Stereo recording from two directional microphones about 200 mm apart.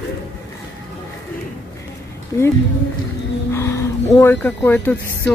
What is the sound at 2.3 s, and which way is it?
Speech, 15° left (ahead or behind).